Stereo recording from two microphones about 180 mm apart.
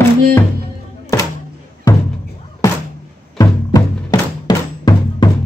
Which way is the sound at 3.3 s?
20° left (ahead or behind).